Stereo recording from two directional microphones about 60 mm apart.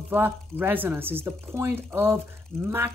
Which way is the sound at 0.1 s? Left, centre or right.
Right.